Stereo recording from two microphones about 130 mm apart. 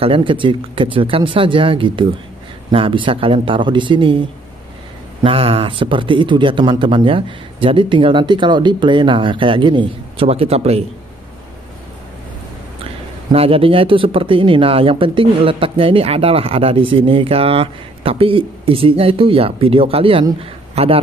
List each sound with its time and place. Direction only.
0.0 s speech: 40° right (ahead or behind)
5.2 s speech: 45° right (ahead or behind)
13.3 s speech: 45° right (ahead or behind)